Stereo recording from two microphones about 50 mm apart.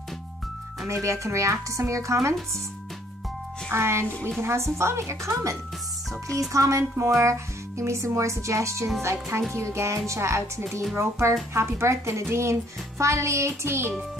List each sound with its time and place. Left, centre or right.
0.8 s speech: right
3.7 s speech: right
9.0 s speech: right
10.0 s speech: right
11.0 s speech: right
13.0 s speech: right